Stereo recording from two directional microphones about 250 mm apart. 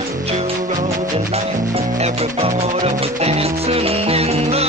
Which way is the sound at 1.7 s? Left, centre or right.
Right.